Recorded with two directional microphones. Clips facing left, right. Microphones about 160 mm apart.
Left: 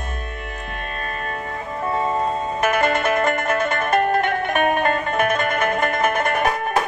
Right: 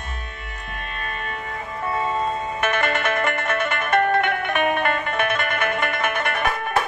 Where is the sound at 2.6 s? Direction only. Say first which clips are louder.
Left 4 dB; 40° left (ahead or behind).